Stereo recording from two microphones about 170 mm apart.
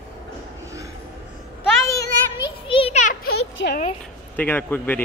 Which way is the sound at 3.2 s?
75° left (ahead or behind).